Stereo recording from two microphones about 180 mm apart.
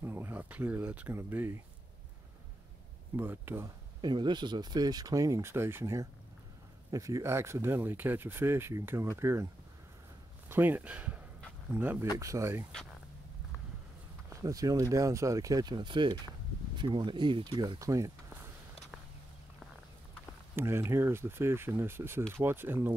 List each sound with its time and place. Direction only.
0.0 s speech: 15° right (ahead or behind)
3.2 s speech: 10° right (ahead or behind)
4.0 s speech: 25° right (ahead or behind)
10.5 s speech: 10° right (ahead or behind)
14.3 s speech: 20° right (ahead or behind)
20.5 s speech: 15° right (ahead or behind)